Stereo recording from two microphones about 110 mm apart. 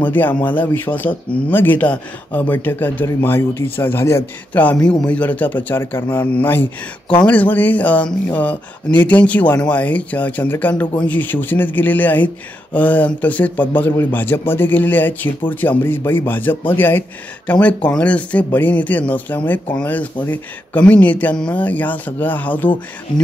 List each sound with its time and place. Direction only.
0.0 s speech: 15° left (ahead or behind)